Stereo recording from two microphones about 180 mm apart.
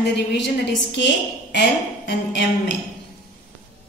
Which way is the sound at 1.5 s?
70° left (ahead or behind).